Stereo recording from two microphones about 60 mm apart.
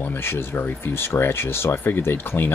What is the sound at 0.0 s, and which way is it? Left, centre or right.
Speech, left.